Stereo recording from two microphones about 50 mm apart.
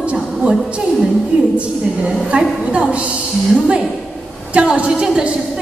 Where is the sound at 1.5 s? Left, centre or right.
Right.